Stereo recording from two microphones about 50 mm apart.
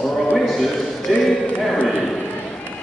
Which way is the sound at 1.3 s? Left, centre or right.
Centre.